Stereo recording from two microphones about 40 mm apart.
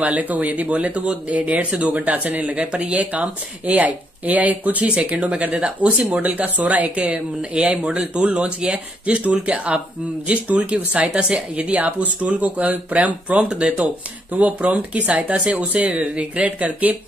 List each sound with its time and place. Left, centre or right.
0.0 s speech: right
4.8 s speech: right
11.7 s speech: right